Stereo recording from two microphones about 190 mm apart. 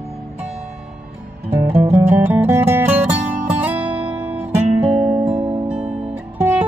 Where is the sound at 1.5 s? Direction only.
35° right (ahead or behind).